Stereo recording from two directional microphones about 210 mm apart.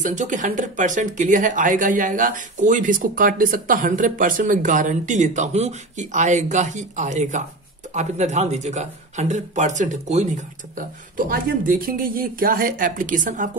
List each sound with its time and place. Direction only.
0.0 s speech: 35° right (ahead or behind)